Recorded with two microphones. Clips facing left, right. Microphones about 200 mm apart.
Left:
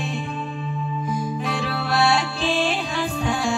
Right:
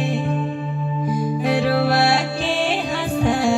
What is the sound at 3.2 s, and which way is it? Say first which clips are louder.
Music: right 7 dB; 60° right (ahead or behind).